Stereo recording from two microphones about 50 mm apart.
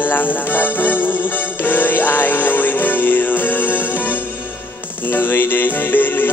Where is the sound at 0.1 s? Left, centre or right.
Left.